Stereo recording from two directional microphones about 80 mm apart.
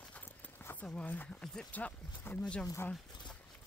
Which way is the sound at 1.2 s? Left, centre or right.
Centre.